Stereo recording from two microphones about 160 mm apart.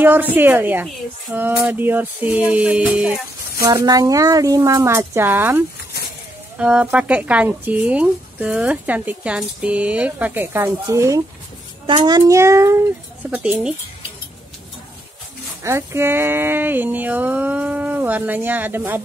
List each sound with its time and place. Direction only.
0.0 s speech: 10° right (ahead or behind)
3.6 s speech: 20° right (ahead or behind)
6.6 s speech: 5° right (ahead or behind)
13.3 s speech: 5° right (ahead or behind)
15.6 s speech: 15° right (ahead or behind)